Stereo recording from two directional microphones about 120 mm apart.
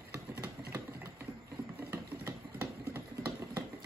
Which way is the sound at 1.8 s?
15° right (ahead or behind).